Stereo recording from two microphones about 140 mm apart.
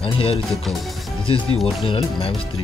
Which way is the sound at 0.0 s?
40° left (ahead or behind).